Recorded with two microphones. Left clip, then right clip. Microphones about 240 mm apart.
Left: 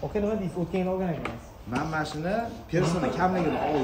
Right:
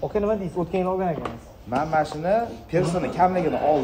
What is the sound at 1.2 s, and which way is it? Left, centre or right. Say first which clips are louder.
A man's voice: right 3 dB; centre.